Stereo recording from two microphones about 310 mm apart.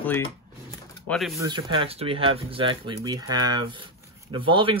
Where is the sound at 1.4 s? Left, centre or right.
Centre.